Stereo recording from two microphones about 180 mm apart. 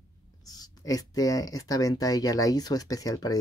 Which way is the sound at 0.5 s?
20° left (ahead or behind).